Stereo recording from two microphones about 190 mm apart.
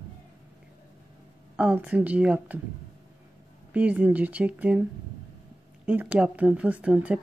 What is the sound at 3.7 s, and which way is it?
Speech, 10° right (ahead or behind).